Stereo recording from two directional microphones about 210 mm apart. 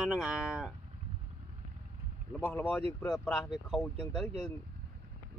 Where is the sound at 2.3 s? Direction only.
5° left (ahead or behind).